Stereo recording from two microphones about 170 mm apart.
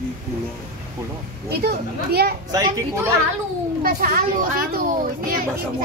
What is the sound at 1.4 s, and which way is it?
Speech, 65° right (ahead or behind).